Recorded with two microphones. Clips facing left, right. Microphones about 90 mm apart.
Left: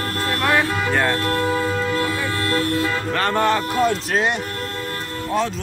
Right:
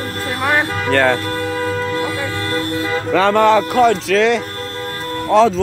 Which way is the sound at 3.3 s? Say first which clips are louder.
Right 6 dB; 75° right (ahead or behind).